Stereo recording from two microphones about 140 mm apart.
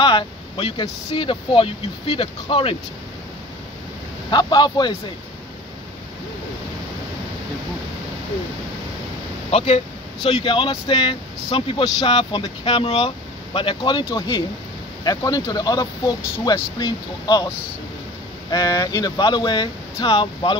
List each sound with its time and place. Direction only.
0.0 s speech: 40° left (ahead or behind)
4.3 s speech: 30° left (ahead or behind)
9.5 s speech: 45° left (ahead or behind); by 17.5 s 30° left (ahead or behind)
18.5 s speech: 25° left (ahead or behind)